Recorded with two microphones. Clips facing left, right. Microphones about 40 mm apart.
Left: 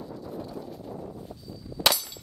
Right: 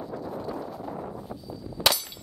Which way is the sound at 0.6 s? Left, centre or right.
Right.